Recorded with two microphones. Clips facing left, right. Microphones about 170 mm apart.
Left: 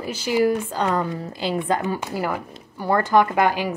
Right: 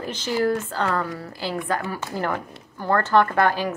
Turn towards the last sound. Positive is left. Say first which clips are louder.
# left 1 dB
turn(degrees=15)  # may be behind; listen again after turning